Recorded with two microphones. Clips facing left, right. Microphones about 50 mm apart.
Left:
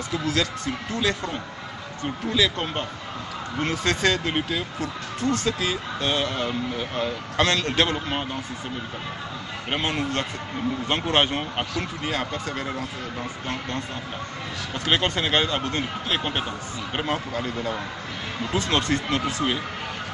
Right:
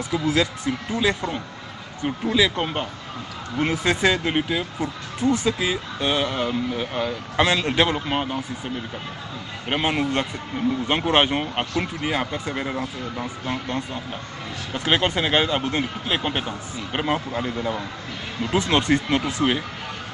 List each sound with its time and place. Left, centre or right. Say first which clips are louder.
0.1 s speech: right 4 dB; centre
9.7 s speech: right 4 dB; centre
18.5 s speech: right 4 dB; right